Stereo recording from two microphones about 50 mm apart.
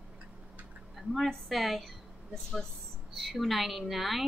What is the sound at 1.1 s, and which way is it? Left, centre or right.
A woman's voice, centre.